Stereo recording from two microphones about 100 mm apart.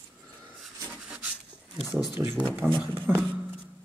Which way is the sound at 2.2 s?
20° right (ahead or behind).